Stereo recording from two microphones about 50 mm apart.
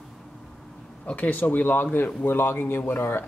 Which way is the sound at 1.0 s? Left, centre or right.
Left.